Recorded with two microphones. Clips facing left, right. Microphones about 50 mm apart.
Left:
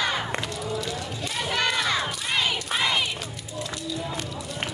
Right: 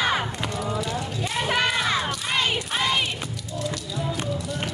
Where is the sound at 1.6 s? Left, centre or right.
Centre.